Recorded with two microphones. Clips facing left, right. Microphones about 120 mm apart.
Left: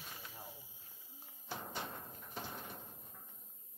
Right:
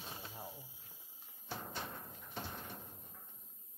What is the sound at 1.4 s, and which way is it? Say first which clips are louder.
Music: even; centre (ahead or behind).